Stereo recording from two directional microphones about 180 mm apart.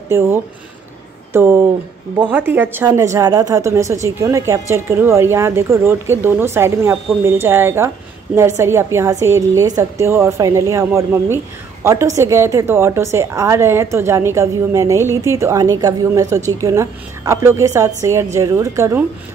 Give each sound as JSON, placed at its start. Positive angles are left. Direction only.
{"t": 0.1, "sound": "a woman's voice", "side_deg": -15}
{"t": 1.3, "sound": "a woman's voice", "side_deg": -15}